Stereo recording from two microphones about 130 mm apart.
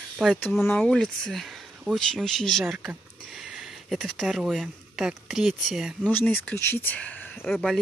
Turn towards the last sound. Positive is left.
turn(degrees=0)  # may be behind; listen again after turning